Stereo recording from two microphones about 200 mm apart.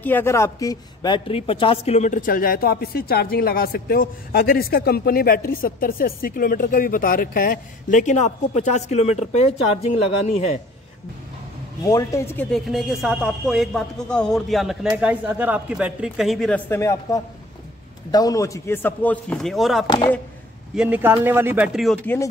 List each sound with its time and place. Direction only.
0.0 s a woman's voice: 10° left (ahead or behind); by 10.6 s 30° left (ahead or behind)
11.8 s speech: 15° left (ahead or behind)
12.4 s speech: centre (ahead or behind)